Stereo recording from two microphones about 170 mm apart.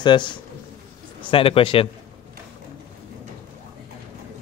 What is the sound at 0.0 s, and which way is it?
A man's voice, 25° left (ahead or behind).